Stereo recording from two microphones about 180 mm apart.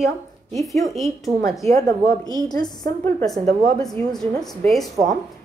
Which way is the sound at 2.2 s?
20° left (ahead or behind).